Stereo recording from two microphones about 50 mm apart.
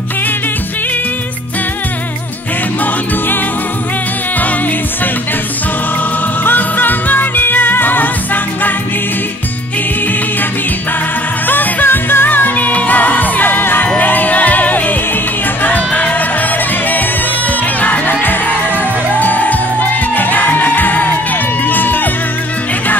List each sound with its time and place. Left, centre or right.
6.4 s music: left
11.4 s music: left
17.7 s music: left